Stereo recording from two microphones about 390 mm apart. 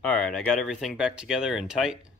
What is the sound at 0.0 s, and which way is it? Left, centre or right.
Speech, centre.